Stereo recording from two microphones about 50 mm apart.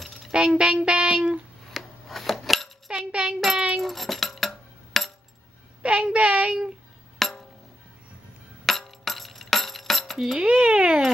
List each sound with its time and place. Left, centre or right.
0.0 s music: centre
0.3 s speech: centre
0.8 s a sound: right
1.7 s scissors: centre
2.9 s a sound: right
3.8 s cutlery: centre
5.8 s a woman's voice: right
7.2 s music: centre
8.6 s music: centre
10.1 s a child's voice: centre
10.4 s a woman's voice: right